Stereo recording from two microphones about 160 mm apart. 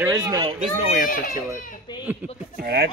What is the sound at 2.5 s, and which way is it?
Speech, 85° right.